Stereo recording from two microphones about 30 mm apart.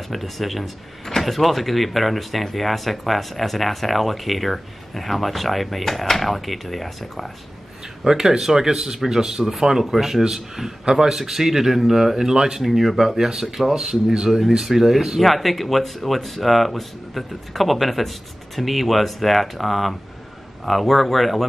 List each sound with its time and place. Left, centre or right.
0.1 s speech: centre
8.0 s speech: centre
12.4 s speech: right
12.6 s speech: centre
15.2 s speech: centre